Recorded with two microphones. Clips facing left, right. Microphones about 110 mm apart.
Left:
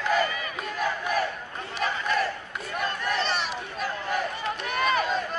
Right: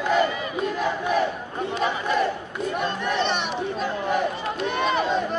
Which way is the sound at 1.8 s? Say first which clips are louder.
Right 3 dB; 20° right (ahead or behind).